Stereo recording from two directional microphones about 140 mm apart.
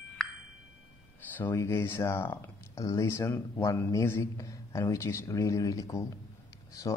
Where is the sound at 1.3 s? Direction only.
15° left (ahead or behind).